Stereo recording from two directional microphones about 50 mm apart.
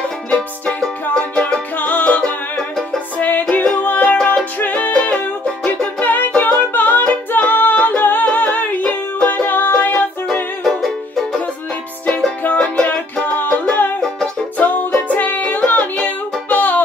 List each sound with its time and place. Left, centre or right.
0.3 s music: left
1.8 s music: left
5.6 s music: centre
5.9 s music: left
10.6 s music: centre
12.4 s music: left
12.8 s music: left
15.0 s music: left